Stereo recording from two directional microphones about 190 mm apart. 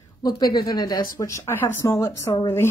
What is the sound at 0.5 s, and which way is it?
A woman's voice, 20° left (ahead or behind).